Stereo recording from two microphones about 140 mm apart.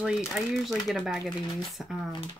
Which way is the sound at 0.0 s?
5° right (ahead or behind).